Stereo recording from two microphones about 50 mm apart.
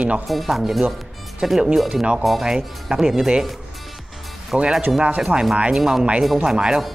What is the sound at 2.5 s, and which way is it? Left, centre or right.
Speech, centre.